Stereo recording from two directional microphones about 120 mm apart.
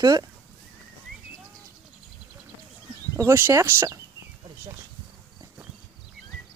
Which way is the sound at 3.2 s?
20° right (ahead or behind).